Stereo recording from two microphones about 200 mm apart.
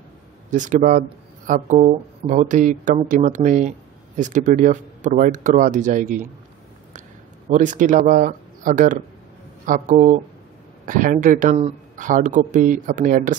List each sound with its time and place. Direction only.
0.5 s speech: 40° right (ahead or behind)
7.4 s speech: 40° right (ahead or behind)